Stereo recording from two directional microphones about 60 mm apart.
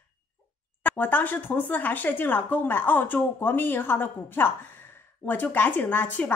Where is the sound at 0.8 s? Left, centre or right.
Left.